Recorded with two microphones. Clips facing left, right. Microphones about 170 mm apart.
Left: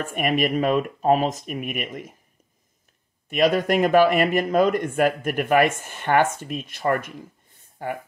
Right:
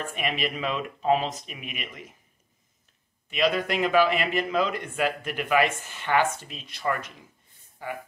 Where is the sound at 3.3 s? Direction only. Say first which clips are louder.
Left 5 dB; 45° left (ahead or behind).